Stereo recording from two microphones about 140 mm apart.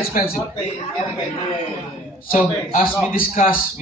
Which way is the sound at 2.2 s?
70° left (ahead or behind).